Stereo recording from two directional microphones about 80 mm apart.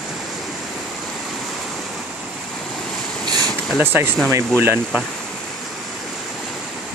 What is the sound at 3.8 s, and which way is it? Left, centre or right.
Speech, right.